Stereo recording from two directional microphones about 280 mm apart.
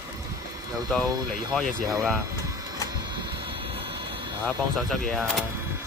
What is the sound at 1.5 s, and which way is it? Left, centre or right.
Speech, centre.